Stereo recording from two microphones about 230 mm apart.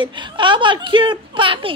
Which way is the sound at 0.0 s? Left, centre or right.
Right.